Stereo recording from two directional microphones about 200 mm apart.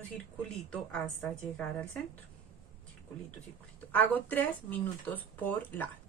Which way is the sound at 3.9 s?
10° left (ahead or behind).